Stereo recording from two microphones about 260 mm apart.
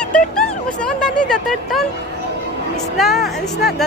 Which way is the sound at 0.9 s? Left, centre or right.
Centre.